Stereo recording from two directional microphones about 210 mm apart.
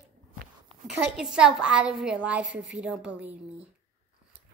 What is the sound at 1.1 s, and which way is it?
A woman's voice, 5° right (ahead or behind).